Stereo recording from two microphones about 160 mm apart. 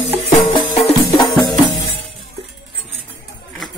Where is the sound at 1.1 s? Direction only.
25° left (ahead or behind).